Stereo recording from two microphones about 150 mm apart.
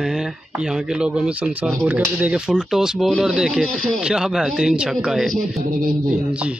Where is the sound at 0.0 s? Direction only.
5° right (ahead or behind).